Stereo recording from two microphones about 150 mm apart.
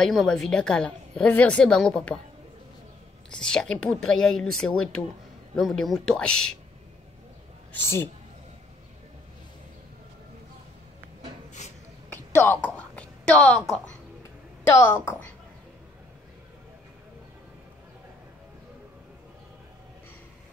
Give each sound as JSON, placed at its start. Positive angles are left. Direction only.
{"t": 0.0, "sound": "a woman's voice", "side_deg": 0}
{"t": 3.3, "sound": "a woman's voice", "side_deg": 5}
{"t": 7.7, "sound": "a woman's voice", "side_deg": 15}
{"t": 12.1, "sound": "a sound", "side_deg": 10}
{"t": 14.7, "sound": "a woman's voice", "side_deg": 15}